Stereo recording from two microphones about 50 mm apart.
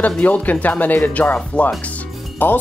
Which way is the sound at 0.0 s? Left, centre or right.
Left.